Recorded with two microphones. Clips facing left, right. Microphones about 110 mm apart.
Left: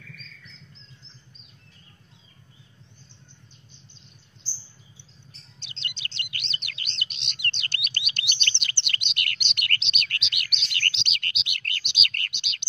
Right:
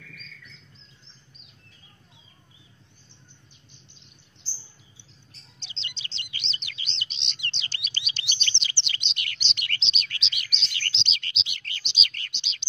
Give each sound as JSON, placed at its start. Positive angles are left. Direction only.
{"t": 5.6, "sound": "chirp", "side_deg": 55}